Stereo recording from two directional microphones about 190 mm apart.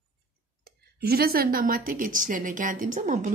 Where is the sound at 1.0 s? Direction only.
55° right (ahead or behind).